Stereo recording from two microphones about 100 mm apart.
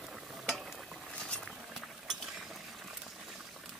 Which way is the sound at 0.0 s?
Centre (ahead or behind).